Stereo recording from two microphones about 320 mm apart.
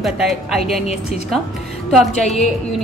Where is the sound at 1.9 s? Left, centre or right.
Centre.